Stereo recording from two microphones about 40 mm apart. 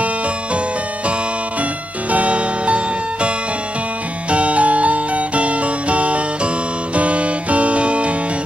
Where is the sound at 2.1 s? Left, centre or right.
Right.